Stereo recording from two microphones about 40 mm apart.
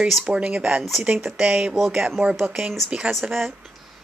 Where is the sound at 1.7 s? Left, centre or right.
Centre.